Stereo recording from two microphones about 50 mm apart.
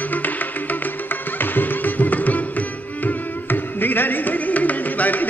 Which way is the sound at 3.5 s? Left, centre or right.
Left.